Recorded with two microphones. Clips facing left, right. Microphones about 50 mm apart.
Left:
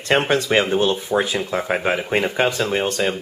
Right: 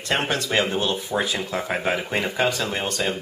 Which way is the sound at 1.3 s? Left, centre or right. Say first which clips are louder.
Left 4 dB; centre.